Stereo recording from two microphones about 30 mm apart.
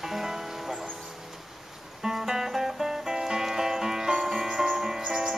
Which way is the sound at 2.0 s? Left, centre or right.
Centre.